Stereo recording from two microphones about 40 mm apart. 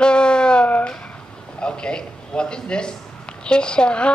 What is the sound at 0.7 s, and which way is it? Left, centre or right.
Speech, left.